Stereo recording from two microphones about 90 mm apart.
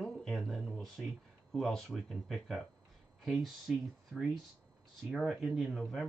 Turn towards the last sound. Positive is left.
turn(degrees=0)  # may be behind; listen again after turning